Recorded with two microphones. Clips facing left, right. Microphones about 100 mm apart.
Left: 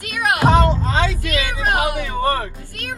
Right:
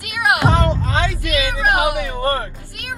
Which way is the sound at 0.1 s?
20° right (ahead or behind).